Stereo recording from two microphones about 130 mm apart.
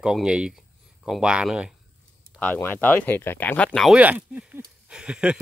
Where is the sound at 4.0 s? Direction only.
10° right (ahead or behind).